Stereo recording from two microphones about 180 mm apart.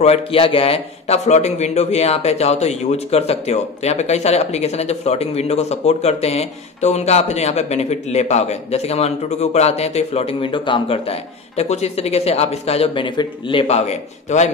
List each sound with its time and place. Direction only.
0.0 s a man's voice: 35° left (ahead or behind)